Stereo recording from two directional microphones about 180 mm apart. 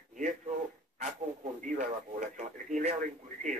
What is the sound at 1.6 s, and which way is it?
Radio, 45° right (ahead or behind).